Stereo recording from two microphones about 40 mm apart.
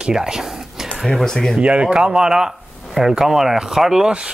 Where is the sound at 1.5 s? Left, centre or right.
Right.